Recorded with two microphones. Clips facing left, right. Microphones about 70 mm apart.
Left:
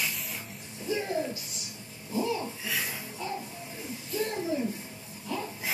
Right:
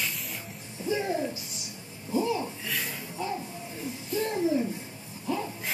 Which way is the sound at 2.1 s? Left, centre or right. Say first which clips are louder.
Right 3 dB; centre.